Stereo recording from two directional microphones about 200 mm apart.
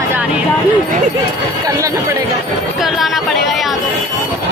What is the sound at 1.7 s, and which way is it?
Speech, 15° right (ahead or behind).